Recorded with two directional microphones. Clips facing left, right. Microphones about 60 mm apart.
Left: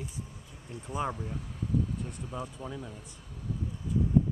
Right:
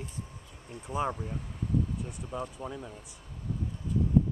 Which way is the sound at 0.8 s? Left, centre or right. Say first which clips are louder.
Right 2 dB; centre.